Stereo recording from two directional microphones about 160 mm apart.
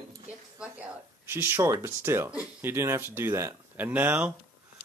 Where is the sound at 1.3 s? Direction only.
15° right (ahead or behind).